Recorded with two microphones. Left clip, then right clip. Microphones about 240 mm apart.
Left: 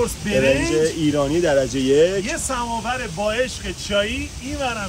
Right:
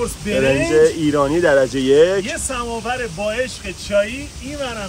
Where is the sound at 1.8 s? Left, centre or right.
Centre.